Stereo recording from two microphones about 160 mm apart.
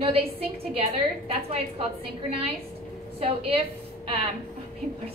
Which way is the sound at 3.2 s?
35° right (ahead or behind).